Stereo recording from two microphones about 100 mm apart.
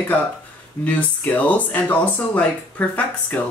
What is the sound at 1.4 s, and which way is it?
Speech, 15° left (ahead or behind).